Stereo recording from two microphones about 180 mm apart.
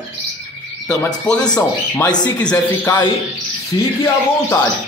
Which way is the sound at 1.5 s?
20° left (ahead or behind).